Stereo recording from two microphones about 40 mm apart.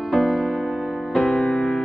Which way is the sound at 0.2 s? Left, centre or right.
Centre.